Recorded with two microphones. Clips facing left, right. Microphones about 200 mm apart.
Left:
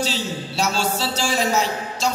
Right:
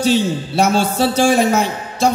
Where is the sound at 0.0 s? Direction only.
55° right (ahead or behind).